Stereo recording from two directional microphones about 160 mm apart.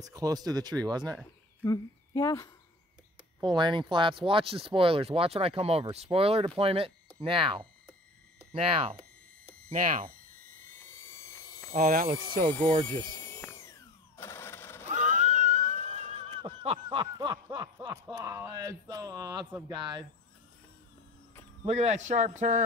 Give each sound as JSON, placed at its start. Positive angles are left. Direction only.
{"t": 0.1, "sound": "speech", "side_deg": -25}
{"t": 1.6, "sound": "speech", "side_deg": 20}
{"t": 3.4, "sound": "speech", "side_deg": -30}
{"t": 9.5, "sound": "speech", "side_deg": -50}
{"t": 10.8, "sound": "a sound", "side_deg": 15}
{"t": 11.7, "sound": "speech", "side_deg": -60}
{"t": 12.4, "sound": "speech", "side_deg": 10}
{"t": 13.3, "sound": "a sound", "side_deg": 15}
{"t": 14.9, "sound": "neigh", "side_deg": -50}
{"t": 16.4, "sound": "snicker", "side_deg": -35}
{"t": 17.9, "sound": "speech", "side_deg": -20}
{"t": 21.6, "sound": "speech", "side_deg": -45}